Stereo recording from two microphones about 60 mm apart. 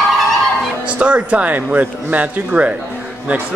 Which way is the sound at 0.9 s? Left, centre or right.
Centre.